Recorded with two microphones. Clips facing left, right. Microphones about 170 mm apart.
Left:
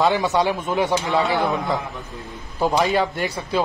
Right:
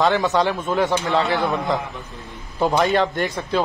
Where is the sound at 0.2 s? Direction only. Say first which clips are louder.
Even; 15° left (ahead or behind).